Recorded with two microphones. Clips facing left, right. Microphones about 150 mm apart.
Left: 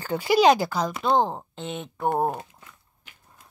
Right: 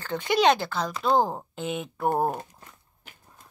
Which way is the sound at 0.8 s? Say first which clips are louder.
Right 1 dB; 5° right (ahead or behind).